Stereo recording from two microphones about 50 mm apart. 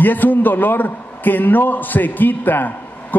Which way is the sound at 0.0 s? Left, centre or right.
Left.